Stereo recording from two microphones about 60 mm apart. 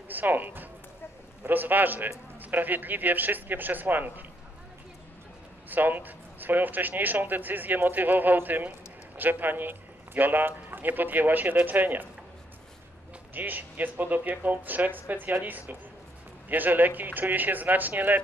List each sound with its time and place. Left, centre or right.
0.1 s speech: right
5.7 s speech: right
13.3 s speech: right